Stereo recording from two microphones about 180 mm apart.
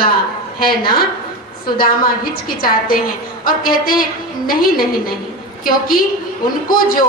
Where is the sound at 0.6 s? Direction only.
55° left (ahead or behind).